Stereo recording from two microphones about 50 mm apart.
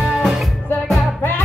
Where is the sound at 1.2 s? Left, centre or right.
Left.